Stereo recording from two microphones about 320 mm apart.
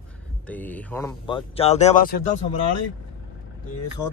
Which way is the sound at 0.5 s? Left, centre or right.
Centre.